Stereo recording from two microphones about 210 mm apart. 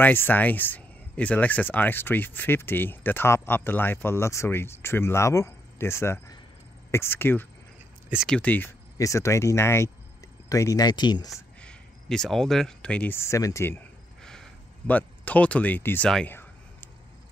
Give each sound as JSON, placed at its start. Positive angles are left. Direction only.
{"t": 0.0, "sound": "speech", "side_deg": 10}
{"t": 8.1, "sound": "speech", "side_deg": 0}
{"t": 11.3, "sound": "a sound", "side_deg": 5}